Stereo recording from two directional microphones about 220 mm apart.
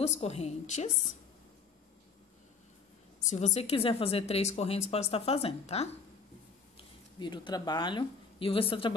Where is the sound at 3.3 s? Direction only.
30° left (ahead or behind).